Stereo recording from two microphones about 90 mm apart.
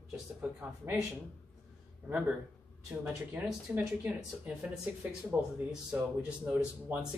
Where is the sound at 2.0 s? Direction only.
20° right (ahead or behind).